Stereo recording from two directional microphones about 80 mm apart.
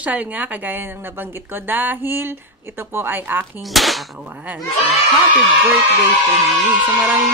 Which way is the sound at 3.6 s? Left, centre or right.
Centre.